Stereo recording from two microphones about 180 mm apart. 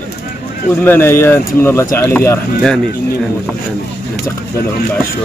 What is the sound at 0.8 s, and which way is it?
Speech, 10° left (ahead or behind).